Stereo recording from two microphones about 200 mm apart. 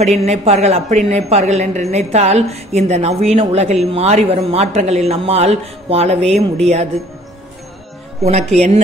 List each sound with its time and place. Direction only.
0.0 s speech: 30° right (ahead or behind)
8.2 s speech: 30° right (ahead or behind)